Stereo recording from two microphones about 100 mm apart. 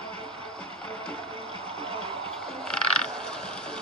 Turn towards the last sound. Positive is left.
turn(degrees=10)  # may be behind; listen again after turning